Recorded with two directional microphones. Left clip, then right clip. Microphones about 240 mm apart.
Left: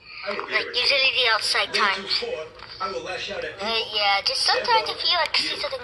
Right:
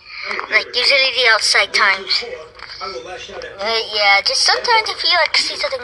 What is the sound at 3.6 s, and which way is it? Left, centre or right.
A woman's voice, right.